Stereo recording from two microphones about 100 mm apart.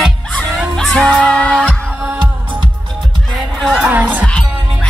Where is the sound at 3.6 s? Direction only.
5° right (ahead or behind).